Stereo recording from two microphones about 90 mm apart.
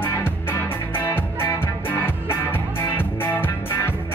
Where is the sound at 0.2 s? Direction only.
25° left (ahead or behind).